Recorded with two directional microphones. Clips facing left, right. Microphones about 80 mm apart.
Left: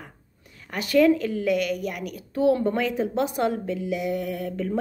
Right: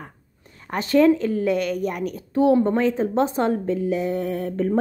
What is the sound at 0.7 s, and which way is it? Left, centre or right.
A woman's voice, right.